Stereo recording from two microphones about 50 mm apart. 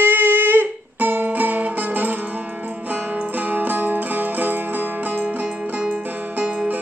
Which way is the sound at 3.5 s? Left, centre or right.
Right.